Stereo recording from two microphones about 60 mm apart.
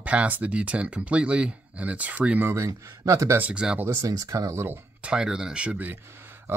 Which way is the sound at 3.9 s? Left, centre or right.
Right.